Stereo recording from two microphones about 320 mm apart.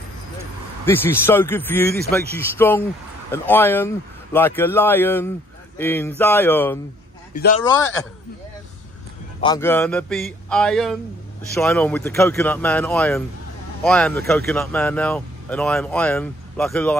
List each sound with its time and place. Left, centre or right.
0.8 s speech: centre
7.3 s speech: left
9.4 s speech: centre